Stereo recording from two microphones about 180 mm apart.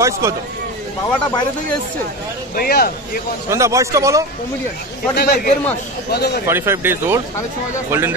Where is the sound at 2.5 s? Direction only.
55° left (ahead or behind).